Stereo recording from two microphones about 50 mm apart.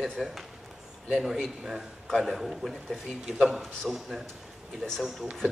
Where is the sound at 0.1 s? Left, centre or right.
Centre.